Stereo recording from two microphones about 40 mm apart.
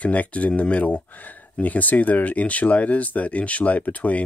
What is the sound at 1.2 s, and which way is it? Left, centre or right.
Speech, left.